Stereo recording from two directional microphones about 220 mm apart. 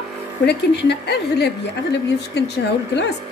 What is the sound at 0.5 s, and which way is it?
A woman's voice, 50° left (ahead or behind).